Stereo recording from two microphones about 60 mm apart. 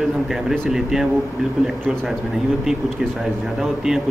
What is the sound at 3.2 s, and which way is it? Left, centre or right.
Speech, centre.